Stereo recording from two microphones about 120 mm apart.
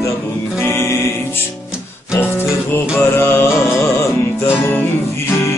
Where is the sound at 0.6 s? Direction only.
20° left (ahead or behind).